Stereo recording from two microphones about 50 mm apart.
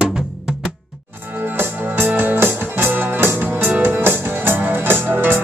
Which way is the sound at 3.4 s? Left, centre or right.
Right.